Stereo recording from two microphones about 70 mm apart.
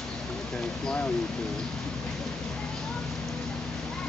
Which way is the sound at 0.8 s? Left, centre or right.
Centre.